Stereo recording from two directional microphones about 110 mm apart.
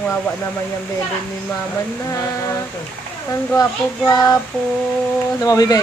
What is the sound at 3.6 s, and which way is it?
Speech, 35° left (ahead or behind).